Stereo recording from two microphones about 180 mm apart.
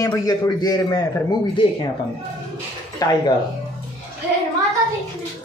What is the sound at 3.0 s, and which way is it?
Speech, 20° left (ahead or behind).